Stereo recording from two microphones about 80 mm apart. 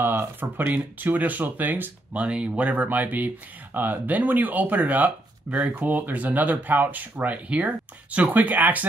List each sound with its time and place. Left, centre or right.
0.0 s speech: right